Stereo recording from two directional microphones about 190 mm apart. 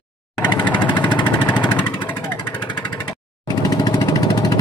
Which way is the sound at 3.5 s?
20° left (ahead or behind).